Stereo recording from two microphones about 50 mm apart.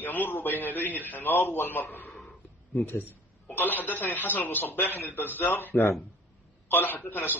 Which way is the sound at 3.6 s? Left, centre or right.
Left.